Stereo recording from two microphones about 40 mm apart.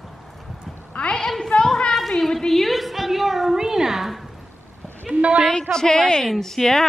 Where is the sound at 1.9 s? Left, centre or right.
Centre.